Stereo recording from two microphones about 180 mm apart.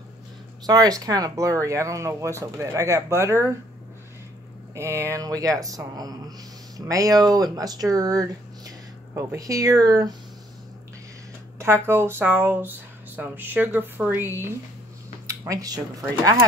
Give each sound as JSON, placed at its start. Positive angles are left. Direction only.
{"t": 0.7, "sound": "speech", "side_deg": -20}
{"t": 4.7, "sound": "speech", "side_deg": -15}
{"t": 11.5, "sound": "speech", "side_deg": -15}